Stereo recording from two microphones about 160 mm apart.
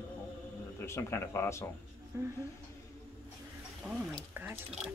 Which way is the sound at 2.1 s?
15° right (ahead or behind).